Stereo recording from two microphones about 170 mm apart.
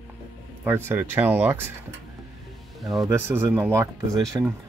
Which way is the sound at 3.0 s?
15° right (ahead or behind).